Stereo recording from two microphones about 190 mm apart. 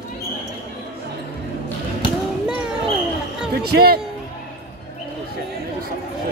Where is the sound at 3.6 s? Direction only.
55° right (ahead or behind).